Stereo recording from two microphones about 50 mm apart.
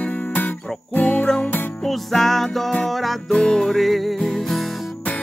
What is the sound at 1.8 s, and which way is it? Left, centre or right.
Music, centre.